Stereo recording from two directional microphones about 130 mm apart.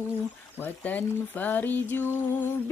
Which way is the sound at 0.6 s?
10° left (ahead or behind).